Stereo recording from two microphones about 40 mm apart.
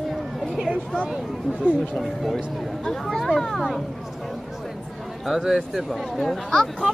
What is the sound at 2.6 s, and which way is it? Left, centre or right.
Speech, centre.